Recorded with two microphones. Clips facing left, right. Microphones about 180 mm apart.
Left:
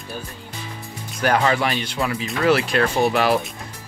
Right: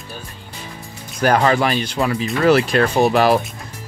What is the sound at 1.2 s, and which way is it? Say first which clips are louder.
Speech: right 4 dB; 45° right (ahead or behind).